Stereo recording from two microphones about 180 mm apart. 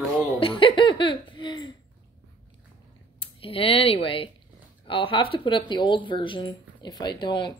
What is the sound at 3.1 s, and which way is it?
Speech, 30° left (ahead or behind).